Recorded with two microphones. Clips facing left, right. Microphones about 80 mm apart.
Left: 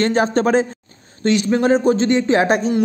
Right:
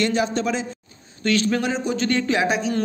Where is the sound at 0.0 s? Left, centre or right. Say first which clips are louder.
Left 5 dB; left.